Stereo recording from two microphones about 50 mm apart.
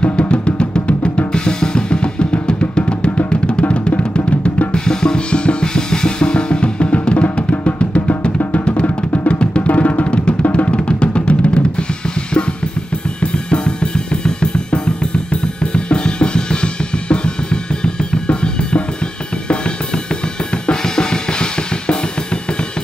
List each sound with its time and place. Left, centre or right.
0.3 s drum: left
8.4 s music: left
8.6 s music: left
10.5 s drum: left
13.2 s drum kit: centre
20.6 s drum kit: centre